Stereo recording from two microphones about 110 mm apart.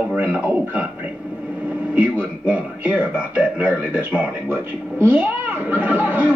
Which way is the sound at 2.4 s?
10° right (ahead or behind).